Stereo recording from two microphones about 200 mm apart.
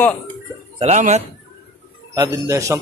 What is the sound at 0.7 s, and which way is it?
Speech, 35° right (ahead or behind).